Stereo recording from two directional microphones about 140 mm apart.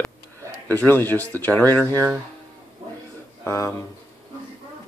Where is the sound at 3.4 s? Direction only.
20° left (ahead or behind).